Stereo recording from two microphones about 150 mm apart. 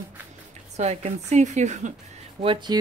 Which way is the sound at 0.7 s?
50° right (ahead or behind).